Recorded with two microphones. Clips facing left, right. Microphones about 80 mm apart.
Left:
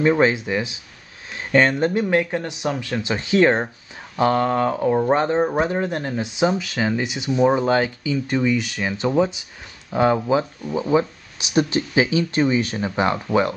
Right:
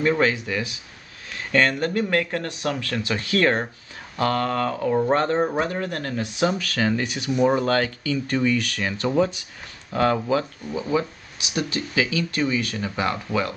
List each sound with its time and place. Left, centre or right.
0.0 s speech: left